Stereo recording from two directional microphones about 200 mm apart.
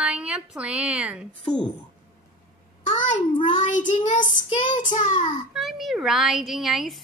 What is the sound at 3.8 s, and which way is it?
Child singing, 35° left (ahead or behind).